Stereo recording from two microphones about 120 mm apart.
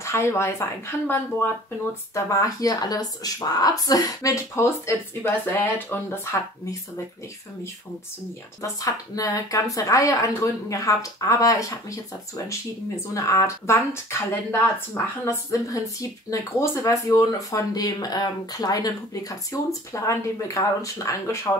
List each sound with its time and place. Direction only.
0.0 s speech: 25° left (ahead or behind)
8.8 s speech: 30° left (ahead or behind)
13.1 s speech: 25° left (ahead or behind)